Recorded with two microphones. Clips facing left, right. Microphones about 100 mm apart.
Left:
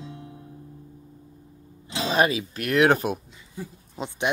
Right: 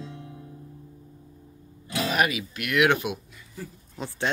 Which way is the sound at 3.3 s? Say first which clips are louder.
Left 2 dB; 20° left (ahead or behind).